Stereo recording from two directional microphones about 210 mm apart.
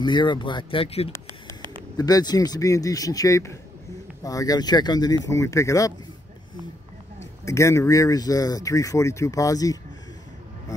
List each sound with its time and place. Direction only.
0.0 s speech: 20° left (ahead or behind)
2.0 s speech: 15° left (ahead or behind)
7.4 s speech: 15° left (ahead or behind)